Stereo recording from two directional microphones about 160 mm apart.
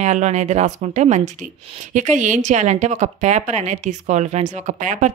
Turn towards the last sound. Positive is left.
turn(degrees=-50)  # may be behind; listen again after turning